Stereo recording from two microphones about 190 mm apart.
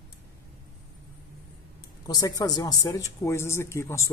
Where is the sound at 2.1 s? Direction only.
20° left (ahead or behind).